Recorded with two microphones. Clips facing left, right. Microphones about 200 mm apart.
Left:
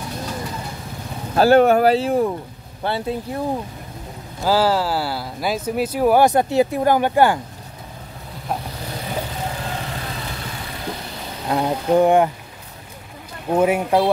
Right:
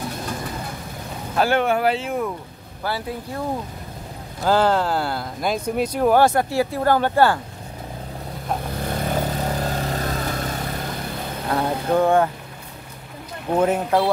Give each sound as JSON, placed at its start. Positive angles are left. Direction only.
{"t": 1.3, "sound": "speech", "side_deg": 35}
{"t": 4.4, "sound": "speech", "side_deg": 5}
{"t": 8.9, "sound": "vehicle", "side_deg": -45}
{"t": 11.4, "sound": "speech", "side_deg": 15}
{"t": 13.5, "sound": "speech", "side_deg": 10}